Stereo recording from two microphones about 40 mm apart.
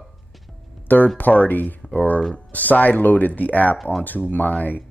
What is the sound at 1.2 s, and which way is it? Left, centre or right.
Speech, left.